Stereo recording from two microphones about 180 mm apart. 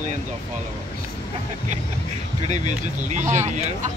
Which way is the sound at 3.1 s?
40° right (ahead or behind).